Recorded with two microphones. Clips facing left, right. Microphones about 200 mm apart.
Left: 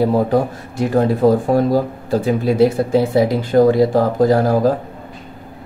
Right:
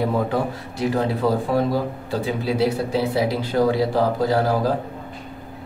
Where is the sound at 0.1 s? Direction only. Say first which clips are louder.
Left 6 dB; 45° left (ahead or behind).